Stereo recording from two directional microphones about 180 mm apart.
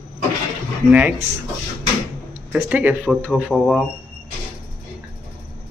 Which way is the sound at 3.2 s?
5° left (ahead or behind).